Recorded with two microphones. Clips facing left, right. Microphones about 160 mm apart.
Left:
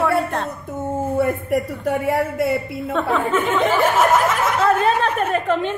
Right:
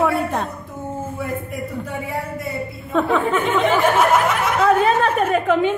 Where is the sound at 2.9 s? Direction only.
Centre (ahead or behind).